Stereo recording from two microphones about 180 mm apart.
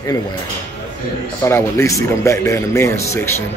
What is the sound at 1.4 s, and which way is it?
Speech, 15° left (ahead or behind).